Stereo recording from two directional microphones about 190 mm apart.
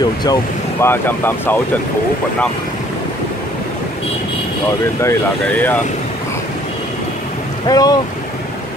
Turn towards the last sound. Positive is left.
turn(degrees=20)  # may be behind; listen again after turning